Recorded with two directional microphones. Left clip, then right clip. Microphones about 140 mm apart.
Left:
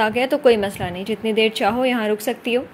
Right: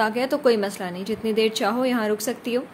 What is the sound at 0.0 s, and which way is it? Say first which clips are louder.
A woman's voice: left 4 dB; 15° left (ahead or behind).